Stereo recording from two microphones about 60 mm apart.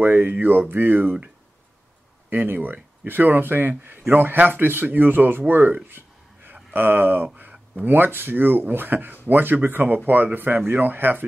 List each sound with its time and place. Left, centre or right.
0.0 s speech: right
2.2 s speech: right
5.9 s a sound: right
7.3 s speech: right